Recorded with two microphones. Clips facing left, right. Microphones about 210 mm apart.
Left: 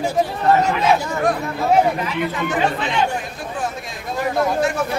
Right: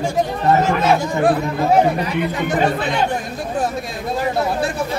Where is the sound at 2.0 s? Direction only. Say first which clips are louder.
Right 2 dB; 40° right (ahead or behind).